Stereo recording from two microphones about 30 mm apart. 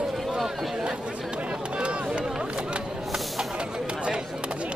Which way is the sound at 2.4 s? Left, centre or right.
Right.